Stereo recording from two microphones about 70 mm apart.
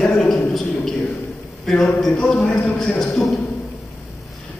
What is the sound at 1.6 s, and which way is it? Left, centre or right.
A man's voice, centre.